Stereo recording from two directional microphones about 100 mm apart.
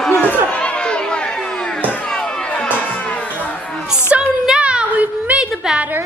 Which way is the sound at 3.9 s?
10° right (ahead or behind).